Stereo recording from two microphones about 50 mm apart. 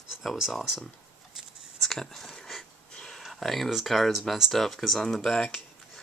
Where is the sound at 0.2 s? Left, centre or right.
Centre.